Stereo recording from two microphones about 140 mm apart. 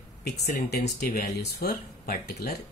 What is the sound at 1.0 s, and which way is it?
Speech, 90° left.